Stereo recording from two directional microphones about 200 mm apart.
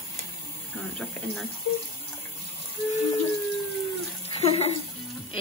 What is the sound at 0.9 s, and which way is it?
Speech, centre (ahead or behind).